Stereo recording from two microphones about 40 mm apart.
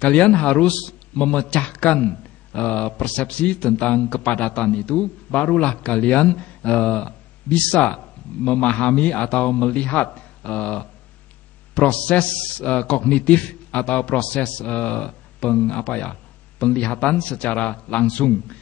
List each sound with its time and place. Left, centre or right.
0.0 s a man's voice: left